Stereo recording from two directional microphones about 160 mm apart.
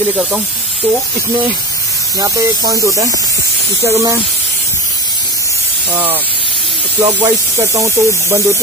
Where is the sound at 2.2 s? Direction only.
20° right (ahead or behind).